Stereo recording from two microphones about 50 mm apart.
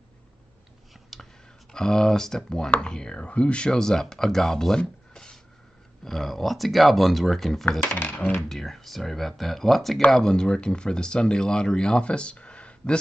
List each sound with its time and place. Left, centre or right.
1.1 s a sound: centre
1.7 s speech: centre
7.9 s coin: left
8.4 s speech: centre
10.1 s speech: centre